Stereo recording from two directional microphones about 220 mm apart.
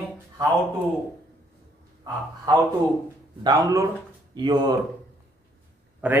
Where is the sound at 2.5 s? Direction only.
20° right (ahead or behind).